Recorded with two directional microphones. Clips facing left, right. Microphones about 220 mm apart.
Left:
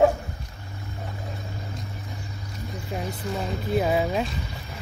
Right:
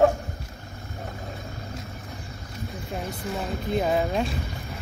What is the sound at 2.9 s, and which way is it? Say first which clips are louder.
Speech: left 2 dB; centre (ahead or behind).